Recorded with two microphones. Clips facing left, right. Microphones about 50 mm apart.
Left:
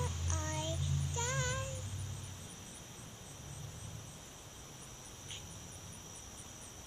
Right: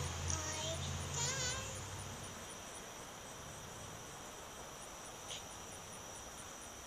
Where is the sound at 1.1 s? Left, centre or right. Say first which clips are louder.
Left 4 dB; left.